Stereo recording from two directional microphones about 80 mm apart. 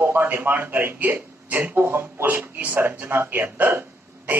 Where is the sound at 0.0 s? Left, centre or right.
Right.